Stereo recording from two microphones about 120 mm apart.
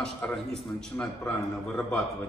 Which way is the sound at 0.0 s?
10° left (ahead or behind).